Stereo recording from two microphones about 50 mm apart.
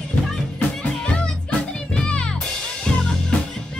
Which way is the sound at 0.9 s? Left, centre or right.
Centre.